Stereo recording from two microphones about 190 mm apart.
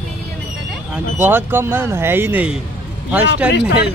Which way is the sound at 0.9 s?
10° right (ahead or behind).